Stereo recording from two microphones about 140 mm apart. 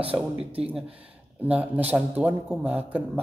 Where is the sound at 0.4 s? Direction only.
45° right (ahead or behind).